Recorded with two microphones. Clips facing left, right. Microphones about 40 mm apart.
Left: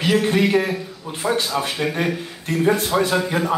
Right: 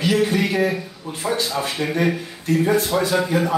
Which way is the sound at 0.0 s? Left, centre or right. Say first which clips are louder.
Left 1 dB; left.